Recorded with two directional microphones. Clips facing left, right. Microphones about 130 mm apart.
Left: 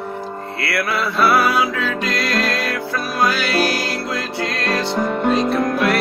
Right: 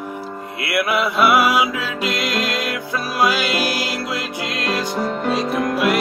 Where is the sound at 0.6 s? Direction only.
20° right (ahead or behind).